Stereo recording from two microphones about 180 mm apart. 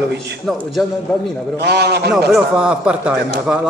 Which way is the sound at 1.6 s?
65° right (ahead or behind).